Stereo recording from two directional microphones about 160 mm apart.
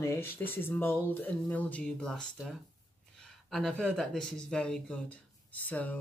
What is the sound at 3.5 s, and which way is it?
Speech, 5° left (ahead or behind).